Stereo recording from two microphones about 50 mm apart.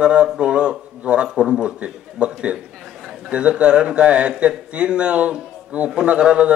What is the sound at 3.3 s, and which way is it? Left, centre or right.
Speech, right.